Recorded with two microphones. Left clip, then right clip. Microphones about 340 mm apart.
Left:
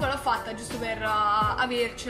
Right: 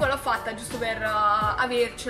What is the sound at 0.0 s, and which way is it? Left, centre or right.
Music, centre.